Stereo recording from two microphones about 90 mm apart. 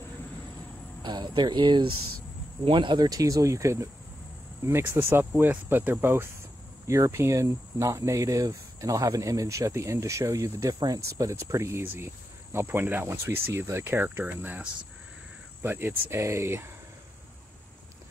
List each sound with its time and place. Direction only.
1.0 s speech: 55° right (ahead or behind)
3.1 s speech: 40° right (ahead or behind)